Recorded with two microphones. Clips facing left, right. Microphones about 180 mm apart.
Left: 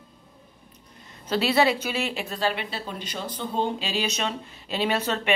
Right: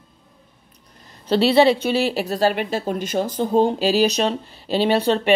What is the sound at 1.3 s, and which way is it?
Speech, 30° right (ahead or behind).